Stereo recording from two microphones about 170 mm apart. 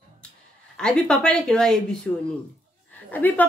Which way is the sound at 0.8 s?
5° left (ahead or behind).